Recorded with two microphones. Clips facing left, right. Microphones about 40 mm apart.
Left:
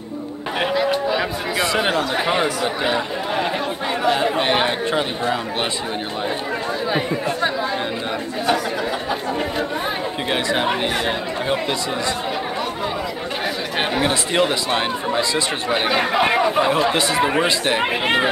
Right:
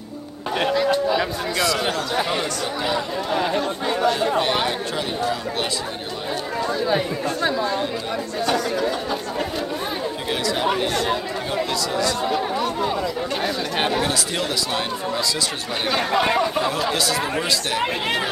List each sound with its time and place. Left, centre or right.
0.6 s a sound: centre
1.6 s speech: left
6.9 s speech: centre
10.3 s speech: left
14.0 s speech: left